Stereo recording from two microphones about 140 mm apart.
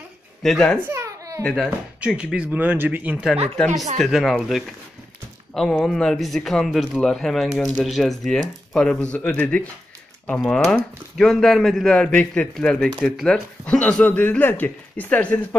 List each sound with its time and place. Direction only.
0.4 s speech: 5° left (ahead or behind)
0.8 s babbling: 20° right (ahead or behind)
1.4 s speech: centre (ahead or behind)
3.5 s speech: 5° left (ahead or behind)